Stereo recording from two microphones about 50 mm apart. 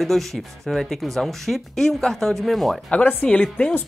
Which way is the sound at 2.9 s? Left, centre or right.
Left.